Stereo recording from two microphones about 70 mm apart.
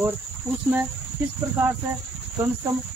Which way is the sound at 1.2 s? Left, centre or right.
Right.